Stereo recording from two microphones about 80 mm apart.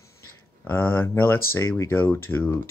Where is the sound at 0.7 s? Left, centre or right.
Left.